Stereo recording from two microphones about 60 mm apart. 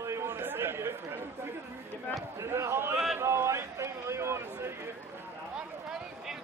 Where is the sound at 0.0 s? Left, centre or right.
Right.